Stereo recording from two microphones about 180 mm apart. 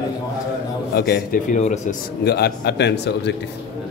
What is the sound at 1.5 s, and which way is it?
Speech, 40° left (ahead or behind).